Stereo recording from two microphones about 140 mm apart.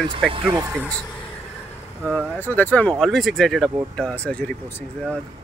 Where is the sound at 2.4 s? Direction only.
15° left (ahead or behind).